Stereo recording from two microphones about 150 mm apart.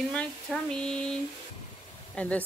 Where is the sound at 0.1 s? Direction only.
5° left (ahead or behind).